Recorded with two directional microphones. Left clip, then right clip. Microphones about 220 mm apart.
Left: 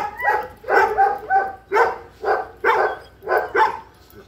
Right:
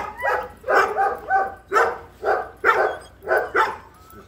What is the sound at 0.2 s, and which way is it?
Dog, 40° right (ahead or behind).